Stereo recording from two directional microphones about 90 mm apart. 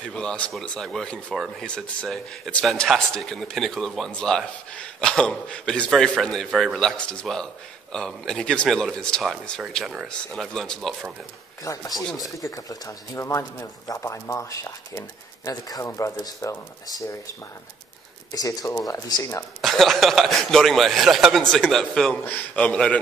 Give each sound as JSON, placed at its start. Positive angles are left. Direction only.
{"t": 0.0, "sound": "a man's voice", "side_deg": 10}
{"t": 11.6, "sound": "speech", "side_deg": 40}
{"t": 11.9, "sound": "speech", "side_deg": 0}
{"t": 12.4, "sound": "speech", "side_deg": 40}
{"t": 18.3, "sound": "speech", "side_deg": 40}
{"t": 19.6, "sound": "a man's voice", "side_deg": 0}
{"t": 22.2, "sound": "a man's voice", "side_deg": 20}